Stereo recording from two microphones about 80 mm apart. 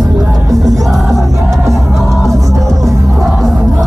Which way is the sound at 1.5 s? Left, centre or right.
Right.